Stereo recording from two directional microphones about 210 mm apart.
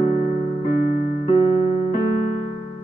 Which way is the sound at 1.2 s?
30° left (ahead or behind).